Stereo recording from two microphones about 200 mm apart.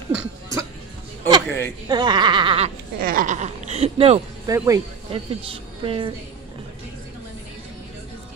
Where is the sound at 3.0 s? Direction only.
45° right (ahead or behind); by 4.2 s 30° right (ahead or behind).